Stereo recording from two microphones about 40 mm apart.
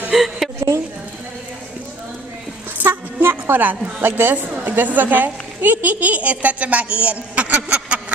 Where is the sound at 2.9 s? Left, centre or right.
Right.